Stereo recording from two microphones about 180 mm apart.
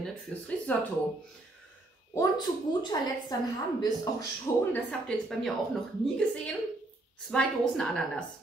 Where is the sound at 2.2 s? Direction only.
25° left (ahead or behind).